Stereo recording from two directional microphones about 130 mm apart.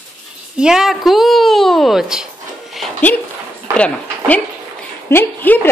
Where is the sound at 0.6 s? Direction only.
5° right (ahead or behind).